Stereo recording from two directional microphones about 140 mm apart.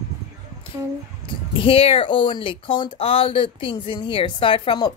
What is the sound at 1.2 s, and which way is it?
Speech, 40° left (ahead or behind).